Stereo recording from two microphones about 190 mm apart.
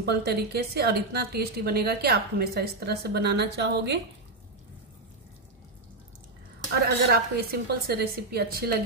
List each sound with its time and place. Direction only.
0.0 s a woman's voice: 60° right (ahead or behind)
6.7 s a woman's voice: 55° right (ahead or behind)